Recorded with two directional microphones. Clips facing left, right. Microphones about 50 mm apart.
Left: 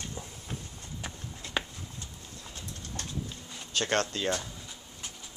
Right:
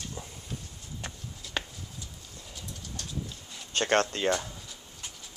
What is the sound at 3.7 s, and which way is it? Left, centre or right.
Speech, right.